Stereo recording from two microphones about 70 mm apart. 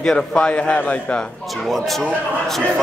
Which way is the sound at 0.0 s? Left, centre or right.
Centre.